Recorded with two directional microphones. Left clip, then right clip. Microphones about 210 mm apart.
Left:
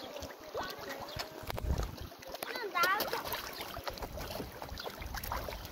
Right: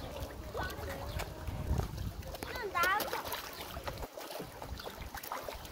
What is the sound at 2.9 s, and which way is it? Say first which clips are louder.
Splash: even; 15° right (ahead or behind).